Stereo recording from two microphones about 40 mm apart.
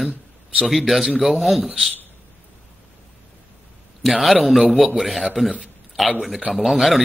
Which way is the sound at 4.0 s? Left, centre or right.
Centre.